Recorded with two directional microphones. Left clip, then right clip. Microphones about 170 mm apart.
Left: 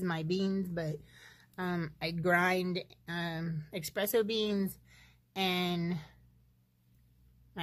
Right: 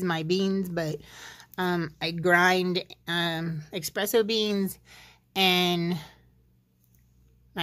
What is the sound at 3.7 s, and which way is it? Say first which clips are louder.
Speech: right 5 dB; 10° right (ahead or behind).